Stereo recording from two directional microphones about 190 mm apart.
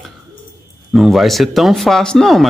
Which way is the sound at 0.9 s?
Centre (ahead or behind).